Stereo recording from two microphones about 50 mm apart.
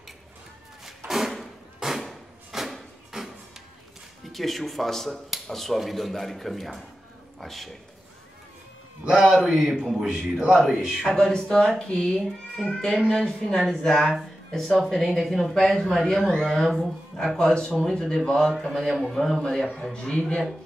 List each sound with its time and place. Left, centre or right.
0.8 s a sound: centre
4.3 s a man's voice: centre
9.0 s a man's voice: centre
11.0 s speech: centre
17.2 s speech: centre
18.7 s speech: centre
19.9 s speech: centre